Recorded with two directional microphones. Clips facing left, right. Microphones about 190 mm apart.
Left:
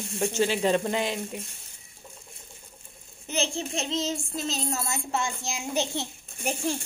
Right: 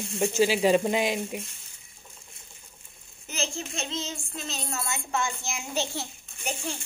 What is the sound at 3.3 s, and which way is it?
Child singing, 30° left (ahead or behind).